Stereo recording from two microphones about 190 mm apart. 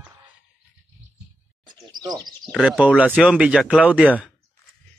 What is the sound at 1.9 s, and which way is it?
Chirp, 20° right (ahead or behind).